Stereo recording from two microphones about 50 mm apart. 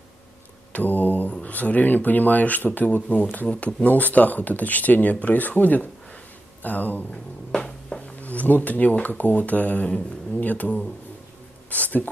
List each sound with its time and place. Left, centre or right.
0.7 s mantra: left
1.4 s speech: left
7.5 s a sound: centre
8.0 s a sound: left
9.2 s speech: left
10.4 s speech: left